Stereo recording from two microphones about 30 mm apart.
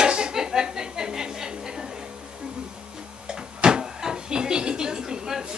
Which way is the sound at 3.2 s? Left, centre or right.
Right.